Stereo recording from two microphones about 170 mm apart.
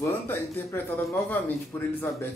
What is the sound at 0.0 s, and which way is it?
Speech, 15° left (ahead or behind).